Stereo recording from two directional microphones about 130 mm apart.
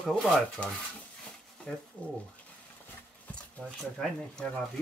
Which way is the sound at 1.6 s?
10° left (ahead or behind).